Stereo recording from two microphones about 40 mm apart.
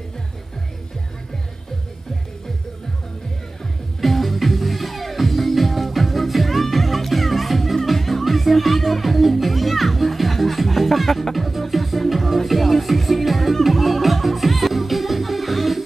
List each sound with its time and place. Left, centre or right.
4.0 s music: centre